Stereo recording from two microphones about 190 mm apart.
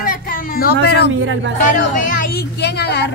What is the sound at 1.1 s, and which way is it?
Speech, 90° right.